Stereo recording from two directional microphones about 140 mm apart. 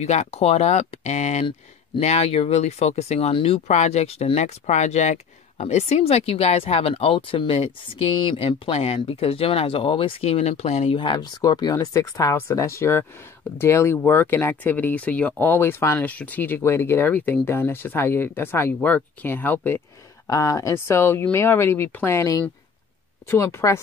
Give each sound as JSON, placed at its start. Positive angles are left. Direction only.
{"t": 0.0, "sound": "speech", "side_deg": 50}
{"t": 11.0, "sound": "speech", "side_deg": 30}
{"t": 20.2, "sound": "speech", "side_deg": 25}